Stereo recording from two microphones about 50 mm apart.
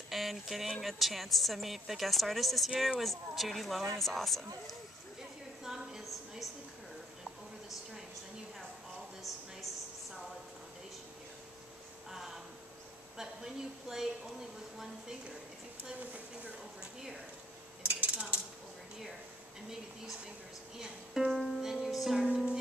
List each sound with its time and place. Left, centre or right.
0.1 s a woman's voice: centre
5.6 s a sound: centre
13.2 s a woman's voice: centre
17.8 s dishes: right
20.8 s music: centre
22.2 s music: right